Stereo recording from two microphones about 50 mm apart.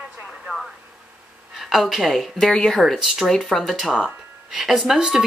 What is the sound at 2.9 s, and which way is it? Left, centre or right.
Speech, centre.